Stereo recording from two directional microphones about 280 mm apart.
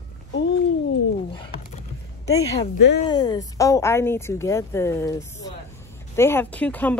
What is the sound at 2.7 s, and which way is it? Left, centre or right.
Speech, left.